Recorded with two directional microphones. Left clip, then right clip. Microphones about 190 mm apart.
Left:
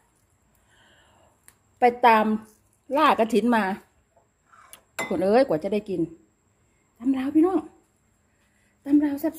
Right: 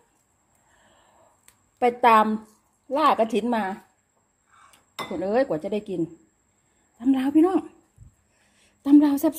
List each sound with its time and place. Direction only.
1.8 s speech: centre (ahead or behind)
2.9 s a woman's voice: 15° left (ahead or behind)
4.6 s chink: 30° left (ahead or behind)
5.6 s a woman's voice: 10° left (ahead or behind)
7.2 s a woman's voice: 20° right (ahead or behind)
8.8 s a woman's voice: 40° right (ahead or behind)